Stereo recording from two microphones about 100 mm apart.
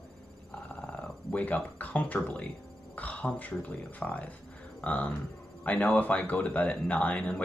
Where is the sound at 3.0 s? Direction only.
15° left (ahead or behind).